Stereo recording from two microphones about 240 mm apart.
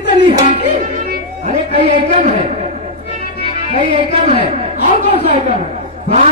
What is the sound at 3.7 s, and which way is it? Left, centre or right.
A woman's voice, right.